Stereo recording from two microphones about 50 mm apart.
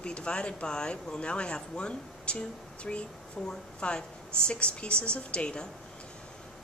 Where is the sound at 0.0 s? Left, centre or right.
Left.